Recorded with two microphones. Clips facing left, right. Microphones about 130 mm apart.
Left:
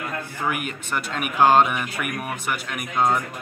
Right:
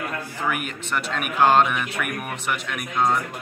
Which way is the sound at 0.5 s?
5° left (ahead or behind).